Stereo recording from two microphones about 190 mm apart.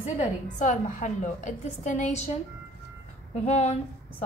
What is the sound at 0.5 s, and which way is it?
A woman's voice, 40° left (ahead or behind).